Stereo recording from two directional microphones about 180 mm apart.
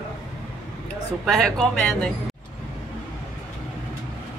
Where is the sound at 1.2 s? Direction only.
5° left (ahead or behind).